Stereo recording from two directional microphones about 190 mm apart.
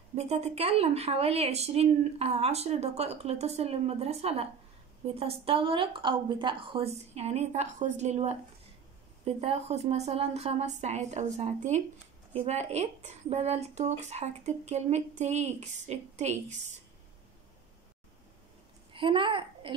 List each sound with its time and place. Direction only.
0.1 s a woman's voice: 35° right (ahead or behind)
18.9 s a child's voice: 25° right (ahead or behind)